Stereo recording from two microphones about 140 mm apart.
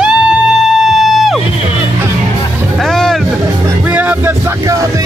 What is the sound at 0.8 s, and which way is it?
Music, centre (ahead or behind).